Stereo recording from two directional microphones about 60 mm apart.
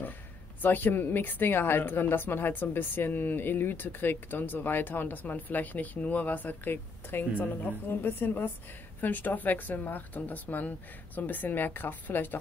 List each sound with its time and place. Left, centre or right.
0.6 s a woman's voice: left